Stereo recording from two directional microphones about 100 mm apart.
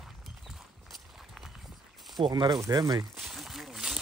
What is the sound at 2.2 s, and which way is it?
Speech, 50° right (ahead or behind).